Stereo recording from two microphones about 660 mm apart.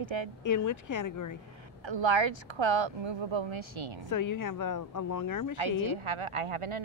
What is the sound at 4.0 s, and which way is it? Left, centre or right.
Speech, left.